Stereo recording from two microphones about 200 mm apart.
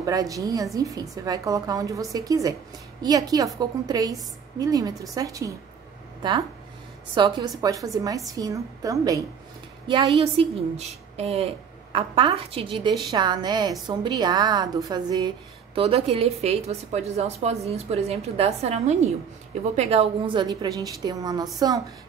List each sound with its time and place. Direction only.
0.0 s a woman's voice: 15° right (ahead or behind)
7.2 s a woman's voice: 20° right (ahead or behind)